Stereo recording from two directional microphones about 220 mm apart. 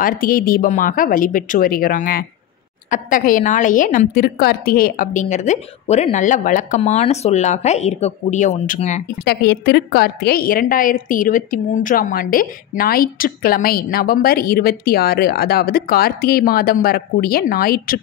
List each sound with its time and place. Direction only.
0.0 s a woman's voice: 40° left (ahead or behind)
9.2 s a woman's voice: 45° left (ahead or behind)